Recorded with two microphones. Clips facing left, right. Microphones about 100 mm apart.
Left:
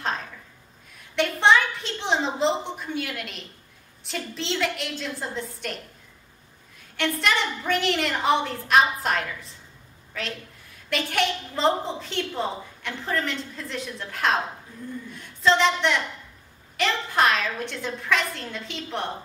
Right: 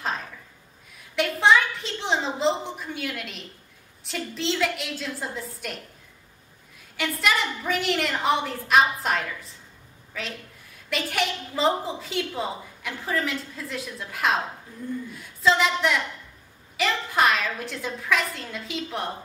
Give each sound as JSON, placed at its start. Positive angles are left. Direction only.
{"t": 0.9, "sound": "a woman's voice", "side_deg": 0}
{"t": 7.0, "sound": "a woman's voice", "side_deg": -5}
{"t": 10.9, "sound": "a woman's voice", "side_deg": 0}